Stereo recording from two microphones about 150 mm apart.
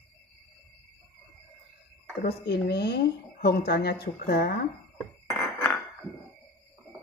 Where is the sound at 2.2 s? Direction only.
90° left.